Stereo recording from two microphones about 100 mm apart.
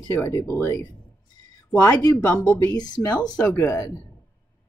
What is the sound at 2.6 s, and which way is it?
Speech, 45° left (ahead or behind).